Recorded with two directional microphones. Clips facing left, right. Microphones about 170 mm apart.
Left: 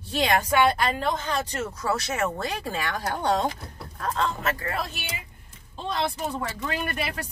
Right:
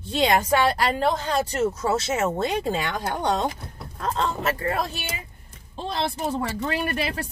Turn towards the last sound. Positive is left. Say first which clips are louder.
# right 3 dB
turn(degrees=-35)  # may be behind; listen again after turning